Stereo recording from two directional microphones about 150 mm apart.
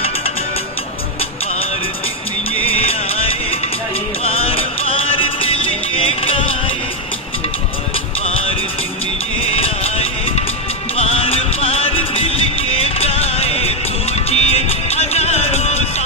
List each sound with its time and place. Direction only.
2.6 s music: 40° left (ahead or behind)
8.3 s music: 40° left (ahead or behind)